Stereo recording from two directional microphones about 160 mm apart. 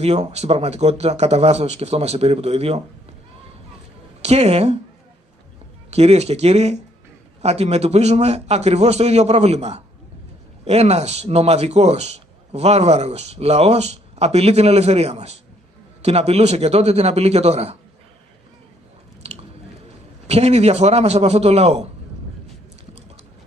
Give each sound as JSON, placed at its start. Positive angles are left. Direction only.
{"t": 0.0, "sound": "a man's voice", "side_deg": -40}
{"t": 4.2, "sound": "a woman's voice", "side_deg": -40}
{"t": 5.9, "sound": "a man's voice", "side_deg": -40}
{"t": 20.2, "sound": "a man's voice", "side_deg": -40}